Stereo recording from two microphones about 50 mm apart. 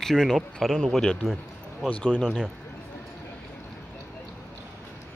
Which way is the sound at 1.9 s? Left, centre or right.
Left.